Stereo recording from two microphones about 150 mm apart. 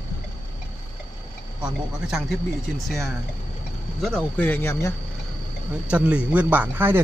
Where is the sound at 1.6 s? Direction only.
5° right (ahead or behind).